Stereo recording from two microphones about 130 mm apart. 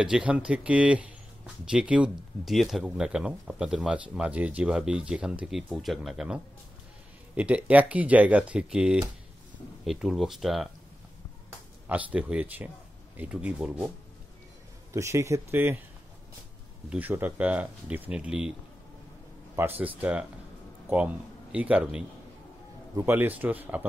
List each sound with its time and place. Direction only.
0.0 s speech: 5° right (ahead or behind)
11.9 s speech: 10° right (ahead or behind)
14.9 s speech: 20° right (ahead or behind)
16.9 s speech: 15° right (ahead or behind)
19.5 s speech: 15° right (ahead or behind)